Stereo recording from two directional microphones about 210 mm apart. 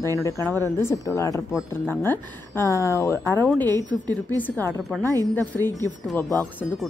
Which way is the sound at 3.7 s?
15° right (ahead or behind).